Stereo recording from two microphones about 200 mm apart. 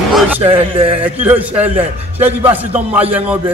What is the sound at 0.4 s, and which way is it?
Speech, 25° right (ahead or behind).